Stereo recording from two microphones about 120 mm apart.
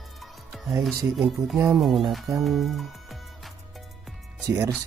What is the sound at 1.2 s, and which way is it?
Speech, centre (ahead or behind).